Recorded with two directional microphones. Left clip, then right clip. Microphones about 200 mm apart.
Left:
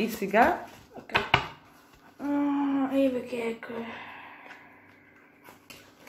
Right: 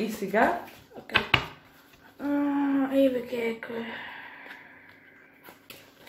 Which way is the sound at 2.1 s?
5° right (ahead or behind).